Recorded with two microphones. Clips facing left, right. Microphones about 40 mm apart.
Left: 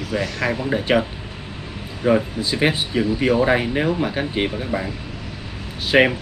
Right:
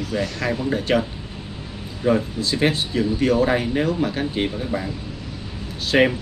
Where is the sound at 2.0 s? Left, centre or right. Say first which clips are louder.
Left 2 dB; centre.